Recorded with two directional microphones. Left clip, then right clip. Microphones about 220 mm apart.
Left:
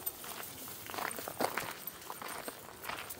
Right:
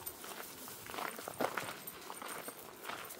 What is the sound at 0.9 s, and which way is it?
Walk, 45° left (ahead or behind).